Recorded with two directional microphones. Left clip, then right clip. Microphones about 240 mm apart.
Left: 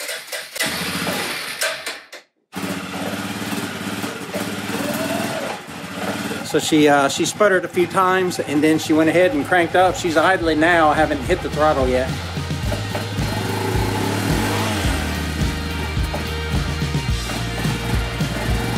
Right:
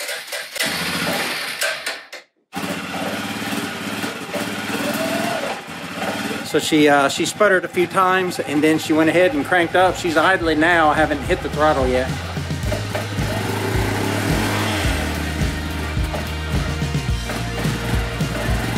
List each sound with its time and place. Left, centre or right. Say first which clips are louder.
0.6 s engine starting: right 1 dB; centre
6.5 s speech: even; centre
16.5 s music: even; centre